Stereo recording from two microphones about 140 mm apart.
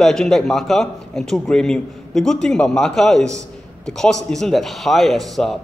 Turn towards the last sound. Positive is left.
turn(degrees=0)  # may be behind; listen again after turning